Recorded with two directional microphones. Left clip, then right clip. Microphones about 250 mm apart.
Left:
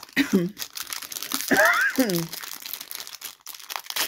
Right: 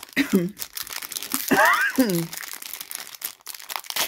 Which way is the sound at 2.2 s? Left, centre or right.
Centre.